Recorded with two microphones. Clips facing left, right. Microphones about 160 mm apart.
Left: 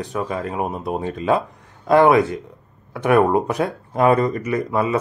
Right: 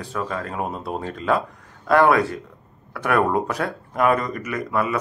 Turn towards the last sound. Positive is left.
turn(degrees=25)  # may be behind; listen again after turning